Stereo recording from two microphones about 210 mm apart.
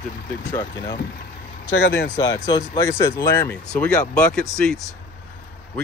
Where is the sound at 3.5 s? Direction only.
5° left (ahead or behind).